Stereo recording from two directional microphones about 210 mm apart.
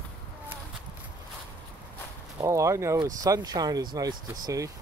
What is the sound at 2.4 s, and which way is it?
Speech, 15° right (ahead or behind).